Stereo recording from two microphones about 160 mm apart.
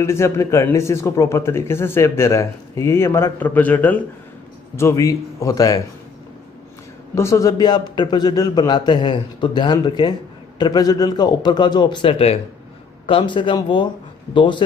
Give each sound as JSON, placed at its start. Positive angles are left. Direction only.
{"t": 0.0, "sound": "a man's voice", "side_deg": 15}
{"t": 7.2, "sound": "a man's voice", "side_deg": 20}